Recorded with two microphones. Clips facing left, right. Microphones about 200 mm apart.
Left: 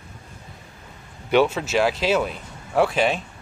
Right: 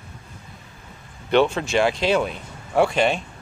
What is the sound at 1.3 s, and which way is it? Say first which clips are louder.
Speech: even; 5° left (ahead or behind).